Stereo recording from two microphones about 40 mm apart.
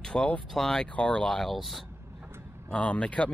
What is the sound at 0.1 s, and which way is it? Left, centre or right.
Speech, left.